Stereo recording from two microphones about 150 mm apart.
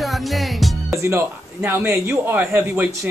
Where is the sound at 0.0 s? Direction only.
Centre (ahead or behind).